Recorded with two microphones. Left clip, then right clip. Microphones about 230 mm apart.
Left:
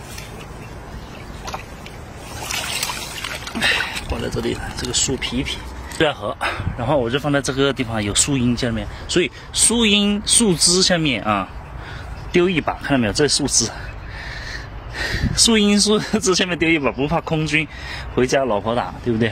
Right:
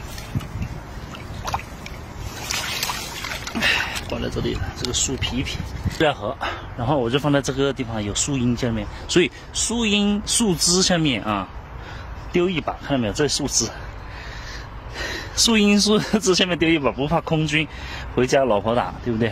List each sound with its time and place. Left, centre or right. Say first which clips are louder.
3.4 s a sound: left 1 dB; centre
4.9 s speech: left 4 dB; centre
5.9 s speech: left 1 dB; centre
7.0 s speech: right 2 dB; centre
7.5 s speech: left 4 dB; centre
9.1 s speech: even; right
9.6 s speech: left 5 dB; centre